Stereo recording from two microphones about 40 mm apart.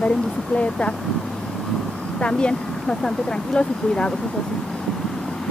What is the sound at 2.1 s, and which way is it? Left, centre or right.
Speech, left.